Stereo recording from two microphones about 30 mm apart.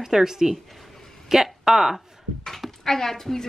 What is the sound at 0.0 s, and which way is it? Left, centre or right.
Speech, centre.